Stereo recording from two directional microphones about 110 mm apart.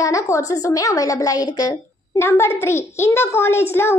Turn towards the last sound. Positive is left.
turn(degrees=20)  # may be behind; listen again after turning